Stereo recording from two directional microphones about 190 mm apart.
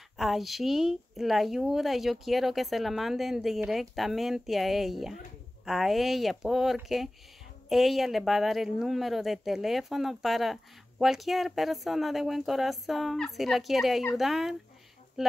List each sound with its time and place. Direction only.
0.2 s speech: centre (ahead or behind)